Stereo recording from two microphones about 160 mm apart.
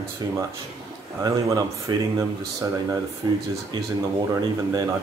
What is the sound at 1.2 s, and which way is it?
Speech, 20° right (ahead or behind).